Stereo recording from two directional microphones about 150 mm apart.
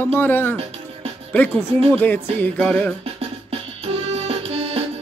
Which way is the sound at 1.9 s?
10° left (ahead or behind).